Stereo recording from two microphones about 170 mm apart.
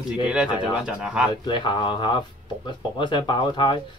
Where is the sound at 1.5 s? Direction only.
30° left (ahead or behind).